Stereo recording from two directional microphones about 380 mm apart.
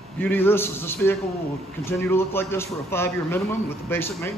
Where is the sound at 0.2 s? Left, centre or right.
Centre.